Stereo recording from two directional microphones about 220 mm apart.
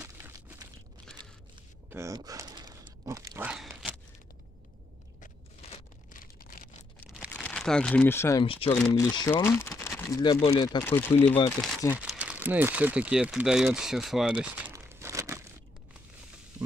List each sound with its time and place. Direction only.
1.2 s a sound: 20° right (ahead or behind); by 3.9 s 5° right (ahead or behind)
5.2 s a sound: 35° left (ahead or behind)
7.2 s speech: 5° left (ahead or behind)
8.5 s speech: 25° left (ahead or behind)
8.7 s speech: 10° left (ahead or behind)
11.9 s speech: 5° right (ahead or behind)